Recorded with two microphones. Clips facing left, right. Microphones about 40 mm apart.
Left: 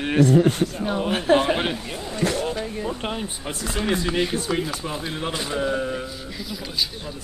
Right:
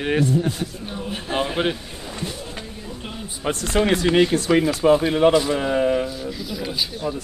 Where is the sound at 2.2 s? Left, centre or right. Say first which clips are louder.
Left 9 dB; left.